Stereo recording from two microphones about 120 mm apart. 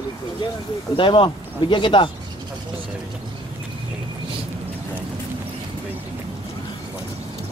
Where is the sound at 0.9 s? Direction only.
45° left (ahead or behind).